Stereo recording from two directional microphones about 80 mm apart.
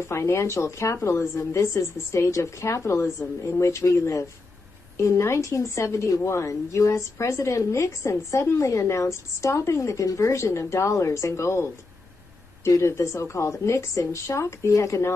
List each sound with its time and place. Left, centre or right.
0.0 s a woman's voice: left